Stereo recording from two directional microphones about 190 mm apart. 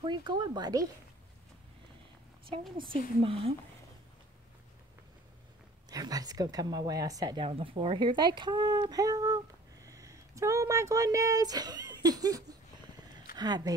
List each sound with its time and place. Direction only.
0.0 s speech: 25° right (ahead or behind)
3.2 s a woman's voice: 30° right (ahead or behind)
5.9 s a woman's voice: 20° right (ahead or behind)
9.8 s a sound: 15° right (ahead or behind)
13.4 s a woman's voice: 20° right (ahead or behind)